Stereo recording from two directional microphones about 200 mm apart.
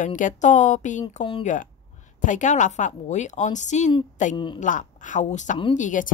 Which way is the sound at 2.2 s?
40° left (ahead or behind).